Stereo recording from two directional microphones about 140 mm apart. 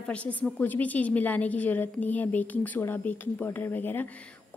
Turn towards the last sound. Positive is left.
turn(degrees=15)  # may be behind; listen again after turning